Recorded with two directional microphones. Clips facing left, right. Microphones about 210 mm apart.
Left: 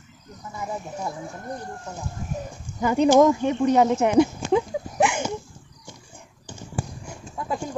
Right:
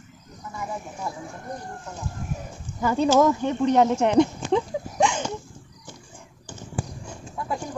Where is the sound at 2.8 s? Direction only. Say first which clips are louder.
Left 3 dB; 15° left (ahead or behind).